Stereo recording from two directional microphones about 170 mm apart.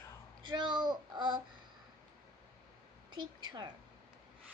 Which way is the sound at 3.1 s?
25° right (ahead or behind).